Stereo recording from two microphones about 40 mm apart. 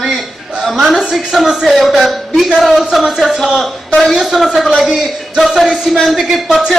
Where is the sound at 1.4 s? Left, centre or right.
Centre.